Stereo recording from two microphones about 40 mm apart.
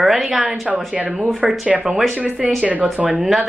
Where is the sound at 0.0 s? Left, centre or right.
Centre.